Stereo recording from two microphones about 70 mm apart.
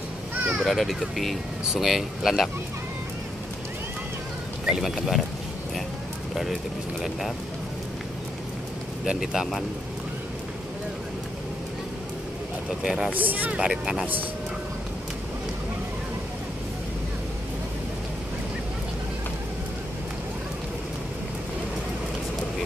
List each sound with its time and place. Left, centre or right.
0.7 s speech: centre
4.6 s speech: centre
7.0 s speech: centre
9.0 s speech: centre
12.8 s speech: centre
13.1 s speech: right
13.6 s speech: centre